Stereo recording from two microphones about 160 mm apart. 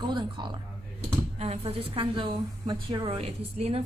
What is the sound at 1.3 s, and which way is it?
A woman's voice, 40° right (ahead or behind).